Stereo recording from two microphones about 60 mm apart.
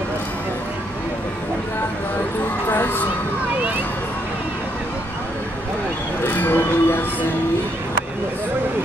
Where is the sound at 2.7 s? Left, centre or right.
Left.